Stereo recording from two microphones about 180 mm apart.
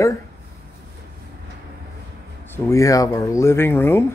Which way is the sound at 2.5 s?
15° left (ahead or behind).